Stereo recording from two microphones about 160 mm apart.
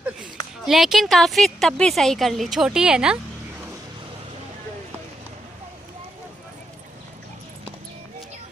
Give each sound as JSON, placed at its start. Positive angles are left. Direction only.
{"t": 0.7, "sound": "a woman's voice", "side_deg": 0}